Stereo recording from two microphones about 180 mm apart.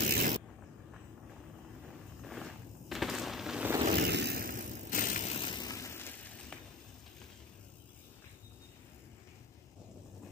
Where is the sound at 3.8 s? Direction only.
65° right (ahead or behind); by 4.7 s 50° right (ahead or behind).